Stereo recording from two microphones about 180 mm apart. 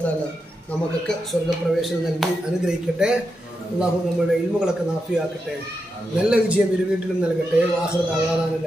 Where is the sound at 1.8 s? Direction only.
Centre (ahead or behind).